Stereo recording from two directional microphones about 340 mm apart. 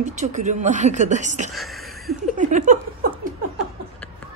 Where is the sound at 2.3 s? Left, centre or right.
Right.